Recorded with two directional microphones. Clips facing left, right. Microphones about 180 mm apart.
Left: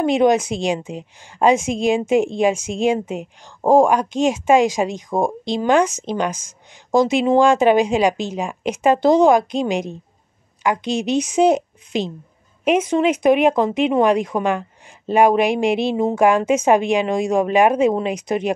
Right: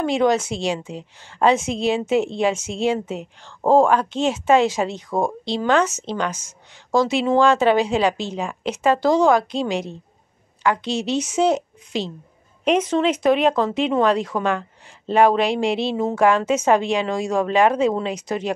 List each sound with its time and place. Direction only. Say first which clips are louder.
0.0 s a woman's voice: left 3 dB; 20° left (ahead or behind)